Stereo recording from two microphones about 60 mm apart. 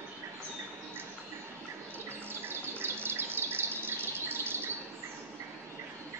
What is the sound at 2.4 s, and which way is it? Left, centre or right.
Bird, right.